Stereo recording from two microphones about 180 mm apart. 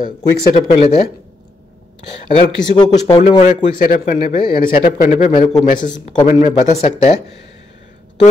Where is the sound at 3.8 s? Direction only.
55° left (ahead or behind); by 7.2 s 35° left (ahead or behind).